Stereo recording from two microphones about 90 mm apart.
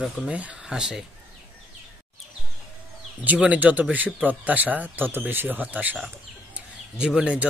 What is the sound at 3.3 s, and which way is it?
Speech, 15° right (ahead or behind).